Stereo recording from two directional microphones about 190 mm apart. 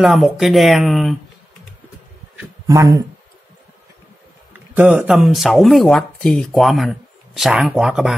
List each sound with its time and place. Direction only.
0.0 s speech: centre (ahead or behind)
2.6 s speech: 15° right (ahead or behind)
4.7 s speech: 5° right (ahead or behind)